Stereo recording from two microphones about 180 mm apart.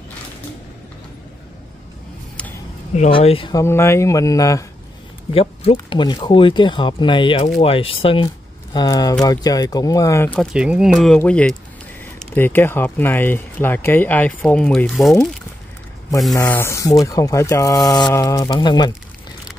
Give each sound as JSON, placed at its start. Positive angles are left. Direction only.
{"t": 2.9, "sound": "speech", "side_deg": 35}
{"t": 3.5, "sound": "speech", "side_deg": 15}
{"t": 5.3, "sound": "speech", "side_deg": 30}
{"t": 16.3, "sound": "speech", "side_deg": 15}